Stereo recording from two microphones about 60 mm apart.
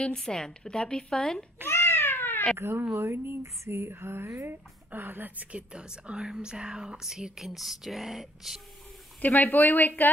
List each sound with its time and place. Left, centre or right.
0.0 s a woman's voice: centre
1.7 s a sound: left
2.5 s speech: right
4.9 s speech: right; by 8.5 s centre
9.2 s speech: left